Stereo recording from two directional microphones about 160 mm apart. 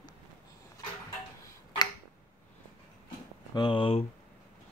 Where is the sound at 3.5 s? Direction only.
30° left (ahead or behind).